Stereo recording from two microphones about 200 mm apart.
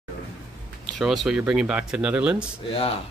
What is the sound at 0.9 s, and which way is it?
Speech, centre (ahead or behind).